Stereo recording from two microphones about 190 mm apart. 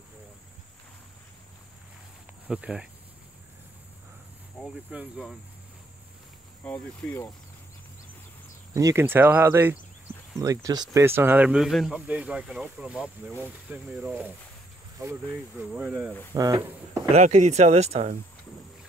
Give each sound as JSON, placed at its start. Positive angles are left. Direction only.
{"t": 2.4, "sound": "speech", "side_deg": -5}
{"t": 4.6, "sound": "speech", "side_deg": -5}
{"t": 6.6, "sound": "speech", "side_deg": 10}
{"t": 8.7, "sound": "speech", "side_deg": -15}
{"t": 15.7, "sound": "speech", "side_deg": -5}
{"t": 16.3, "sound": "speech", "side_deg": -15}
{"t": 17.1, "sound": "speech", "side_deg": -40}